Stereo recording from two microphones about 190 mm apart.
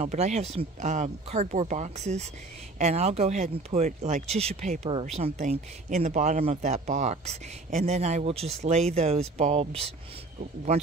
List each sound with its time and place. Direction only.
0.0 s speech: 35° right (ahead or behind)